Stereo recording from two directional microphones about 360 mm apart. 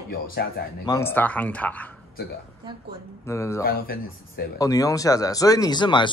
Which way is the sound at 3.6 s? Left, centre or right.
Left.